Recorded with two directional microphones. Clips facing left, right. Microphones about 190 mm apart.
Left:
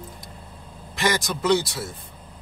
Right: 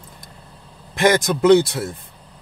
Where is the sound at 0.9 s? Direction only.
55° right (ahead or behind).